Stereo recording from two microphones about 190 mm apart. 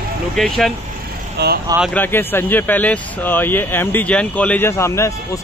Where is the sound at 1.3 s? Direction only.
60° right (ahead or behind).